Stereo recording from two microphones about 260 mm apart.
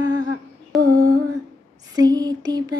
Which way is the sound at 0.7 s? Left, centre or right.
Centre.